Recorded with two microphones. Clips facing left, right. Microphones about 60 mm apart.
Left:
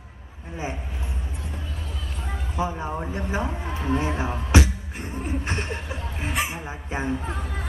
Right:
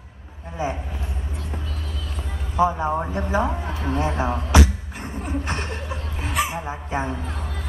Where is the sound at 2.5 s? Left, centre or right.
Right.